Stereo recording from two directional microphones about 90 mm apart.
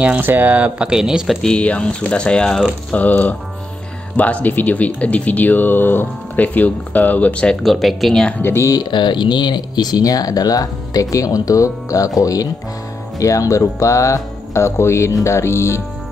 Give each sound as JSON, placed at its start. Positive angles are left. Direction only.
{"t": 0.0, "sound": "speech", "side_deg": -20}
{"t": 1.4, "sound": "speech", "side_deg": 10}
{"t": 7.6, "sound": "speech", "side_deg": 0}
{"t": 8.3, "sound": "speech", "side_deg": 25}
{"t": 8.7, "sound": "speech", "side_deg": 60}